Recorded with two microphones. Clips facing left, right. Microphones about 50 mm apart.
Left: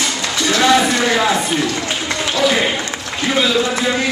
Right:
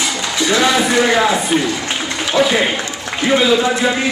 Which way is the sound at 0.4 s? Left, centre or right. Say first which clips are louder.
Right 1 dB; centre.